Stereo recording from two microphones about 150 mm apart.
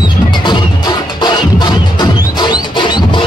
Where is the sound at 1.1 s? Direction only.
30° left (ahead or behind).